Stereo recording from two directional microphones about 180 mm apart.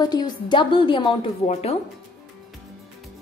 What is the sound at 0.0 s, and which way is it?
A woman's voice, 20° left (ahead or behind).